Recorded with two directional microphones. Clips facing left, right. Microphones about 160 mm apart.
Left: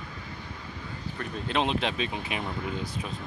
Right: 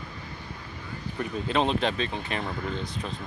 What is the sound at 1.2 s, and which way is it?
Speech, centre (ahead or behind).